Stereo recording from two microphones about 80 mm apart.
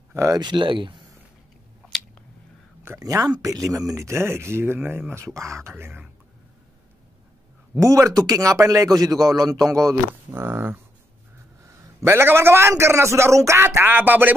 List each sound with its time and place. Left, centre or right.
0.1 s speech: right
0.4 s speech: right
3.0 s a man's voice: right
7.8 s a man's voice: right
10.3 s a man's voice: right